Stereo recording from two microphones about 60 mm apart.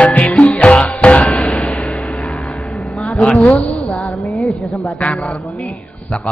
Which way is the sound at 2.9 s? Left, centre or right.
Centre.